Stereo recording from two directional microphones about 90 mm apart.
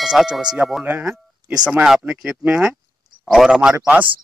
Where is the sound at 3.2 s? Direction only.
5° right (ahead or behind).